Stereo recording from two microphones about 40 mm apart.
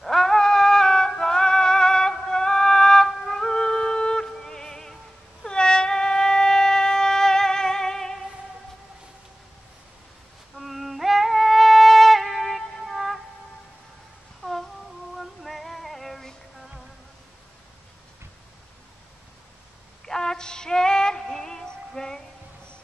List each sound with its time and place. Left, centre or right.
0.0 s music: centre
5.4 s wind instrument: centre
10.5 s music: centre
14.4 s a sound: centre
15.1 s female singing: centre
20.1 s music: centre